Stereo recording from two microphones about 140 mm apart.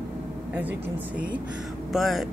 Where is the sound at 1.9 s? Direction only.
Centre (ahead or behind).